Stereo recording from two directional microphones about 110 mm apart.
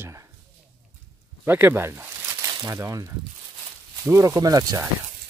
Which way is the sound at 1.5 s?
20° right (ahead or behind).